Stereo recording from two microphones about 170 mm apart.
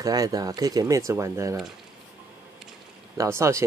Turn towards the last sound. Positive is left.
turn(degrees=-15)  # may be behind; listen again after turning